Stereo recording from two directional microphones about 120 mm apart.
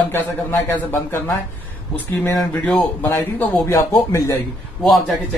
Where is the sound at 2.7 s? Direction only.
5° left (ahead or behind).